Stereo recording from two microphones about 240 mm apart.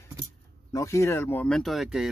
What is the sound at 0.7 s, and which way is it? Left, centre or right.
Speech, centre.